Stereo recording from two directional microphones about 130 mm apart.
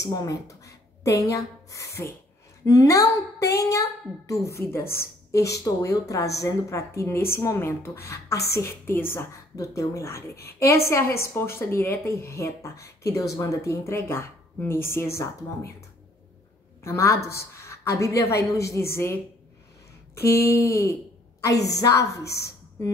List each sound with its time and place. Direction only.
0.0 s a woman's voice: 25° left (ahead or behind)
16.8 s a woman's voice: 20° left (ahead or behind)
20.2 s a woman's voice: 20° left (ahead or behind)